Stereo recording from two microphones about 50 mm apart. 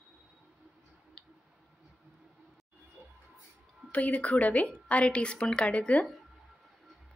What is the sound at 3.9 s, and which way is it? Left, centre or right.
Speech, left.